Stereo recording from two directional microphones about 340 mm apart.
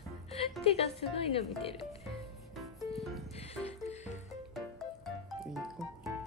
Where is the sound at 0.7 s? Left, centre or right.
Centre.